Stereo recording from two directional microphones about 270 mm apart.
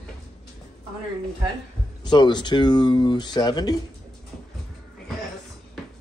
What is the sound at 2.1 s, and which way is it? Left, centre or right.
Speech, centre.